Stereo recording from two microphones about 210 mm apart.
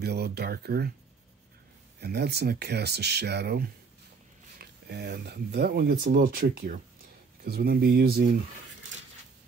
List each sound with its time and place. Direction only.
0.0 s speech: 50° right (ahead or behind)
2.0 s speech: 50° right (ahead or behind)